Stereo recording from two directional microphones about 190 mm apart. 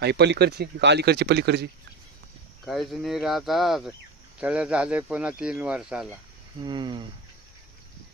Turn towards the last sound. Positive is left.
turn(degrees=-25)  # may be behind; listen again after turning